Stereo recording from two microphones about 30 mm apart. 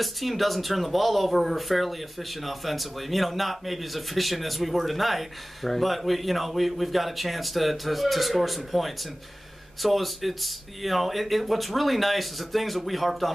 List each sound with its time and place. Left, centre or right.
0.0 s speech: centre